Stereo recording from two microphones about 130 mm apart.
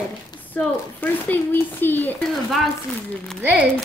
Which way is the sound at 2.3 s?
Centre (ahead or behind).